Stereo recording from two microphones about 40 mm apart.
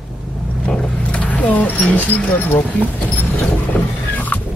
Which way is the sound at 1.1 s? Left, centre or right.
Left.